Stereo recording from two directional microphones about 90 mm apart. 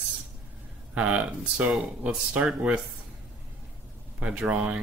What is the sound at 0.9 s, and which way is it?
Speech, 15° right (ahead or behind).